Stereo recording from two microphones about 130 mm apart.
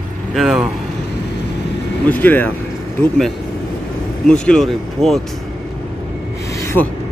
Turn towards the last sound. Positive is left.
turn(degrees=20)  # may be behind; listen again after turning